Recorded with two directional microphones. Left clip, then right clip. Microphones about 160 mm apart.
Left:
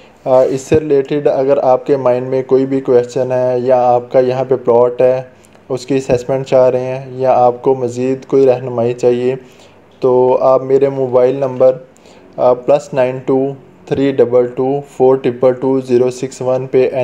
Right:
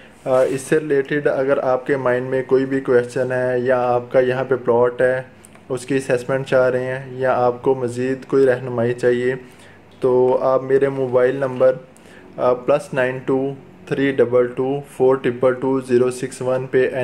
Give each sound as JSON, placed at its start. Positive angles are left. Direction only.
{"t": 0.2, "sound": "a man's voice", "side_deg": 20}
{"t": 10.9, "sound": "a man's voice", "side_deg": 5}
{"t": 11.1, "sound": "a man's voice", "side_deg": 20}